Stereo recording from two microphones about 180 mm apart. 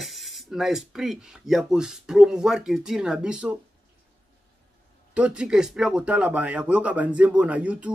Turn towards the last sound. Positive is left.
turn(degrees=-5)  # may be behind; listen again after turning